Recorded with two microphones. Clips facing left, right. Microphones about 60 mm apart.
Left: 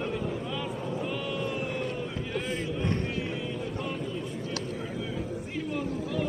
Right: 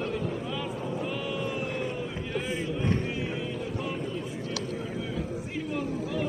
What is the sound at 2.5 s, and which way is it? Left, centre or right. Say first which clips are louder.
Vehicle: right 3 dB; centre.